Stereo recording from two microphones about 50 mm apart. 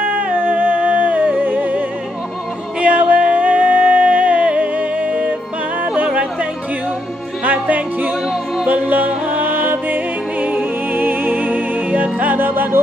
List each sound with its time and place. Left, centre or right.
0.0 s music: right
7.4 s music: right